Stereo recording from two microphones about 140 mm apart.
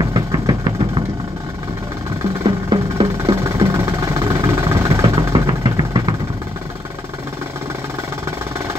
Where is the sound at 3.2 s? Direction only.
20° right (ahead or behind).